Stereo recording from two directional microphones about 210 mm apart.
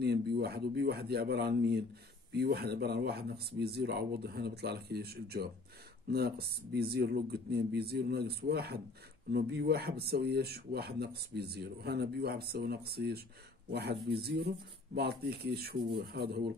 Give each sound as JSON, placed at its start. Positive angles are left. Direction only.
{"t": 0.0, "sound": "speech", "side_deg": -50}